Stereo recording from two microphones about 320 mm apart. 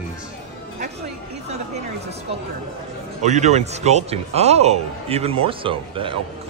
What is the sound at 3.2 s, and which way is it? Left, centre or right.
A man's voice, right.